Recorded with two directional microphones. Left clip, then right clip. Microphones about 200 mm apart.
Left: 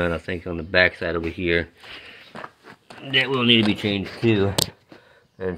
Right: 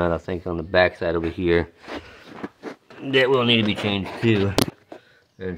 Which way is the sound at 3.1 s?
40° right (ahead or behind).